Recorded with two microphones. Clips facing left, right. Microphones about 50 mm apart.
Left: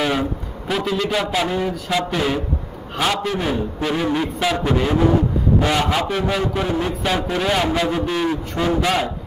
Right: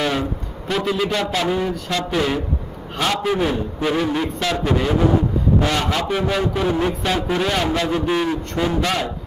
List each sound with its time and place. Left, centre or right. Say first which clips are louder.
0.0 s a sound: left 1 dB; centre
1.1 s a man's voice: even; centre
6.0 s a man's voice: right 1 dB; centre